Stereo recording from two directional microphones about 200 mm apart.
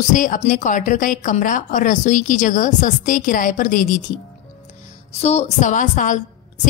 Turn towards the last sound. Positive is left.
turn(degrees=40)  # may be behind; listen again after turning